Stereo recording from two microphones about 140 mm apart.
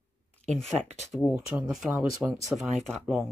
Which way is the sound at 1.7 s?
5° right (ahead or behind).